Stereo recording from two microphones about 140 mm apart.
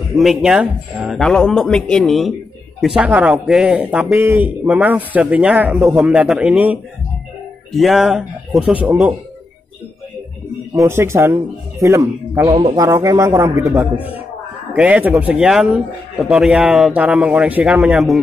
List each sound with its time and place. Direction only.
0.2 s speech: 5° right (ahead or behind)
3.0 s speech: 10° right (ahead or behind)
10.7 s speech: 20° right (ahead or behind); by 18.2 s centre (ahead or behind)